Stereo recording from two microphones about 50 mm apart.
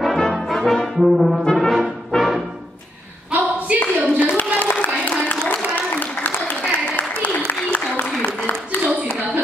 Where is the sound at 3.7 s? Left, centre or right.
Right.